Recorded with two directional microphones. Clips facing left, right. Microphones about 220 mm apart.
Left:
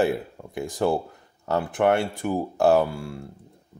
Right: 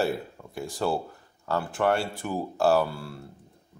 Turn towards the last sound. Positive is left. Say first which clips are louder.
# left 3 dB
turn(degrees=15)  # may be behind; listen again after turning